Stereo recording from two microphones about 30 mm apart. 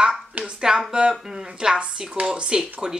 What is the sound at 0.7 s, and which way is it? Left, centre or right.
Speech, centre.